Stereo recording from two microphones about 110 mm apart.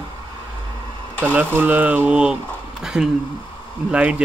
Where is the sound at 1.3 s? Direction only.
20° right (ahead or behind).